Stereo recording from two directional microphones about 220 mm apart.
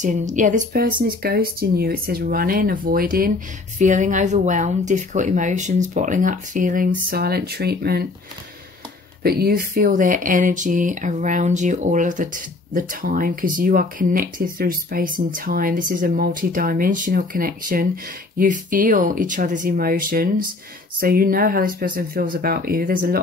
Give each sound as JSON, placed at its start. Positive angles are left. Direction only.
{"t": 0.0, "sound": "speech", "side_deg": -35}
{"t": 9.2, "sound": "speech", "side_deg": -45}